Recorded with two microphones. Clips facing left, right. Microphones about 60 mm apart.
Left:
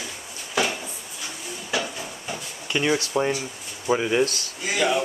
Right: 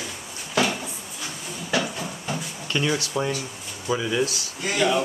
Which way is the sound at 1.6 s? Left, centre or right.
Centre.